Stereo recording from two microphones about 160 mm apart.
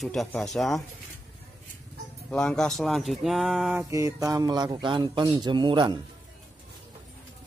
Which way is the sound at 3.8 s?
20° right (ahead or behind).